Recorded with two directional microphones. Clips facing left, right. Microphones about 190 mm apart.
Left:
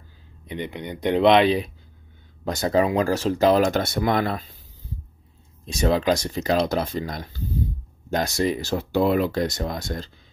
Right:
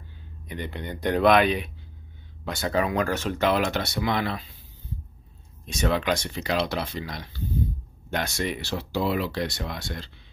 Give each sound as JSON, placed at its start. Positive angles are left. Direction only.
{"t": 0.5, "sound": "speech", "side_deg": 20}
{"t": 2.4, "sound": "speech", "side_deg": 40}
{"t": 5.7, "sound": "speech", "side_deg": 35}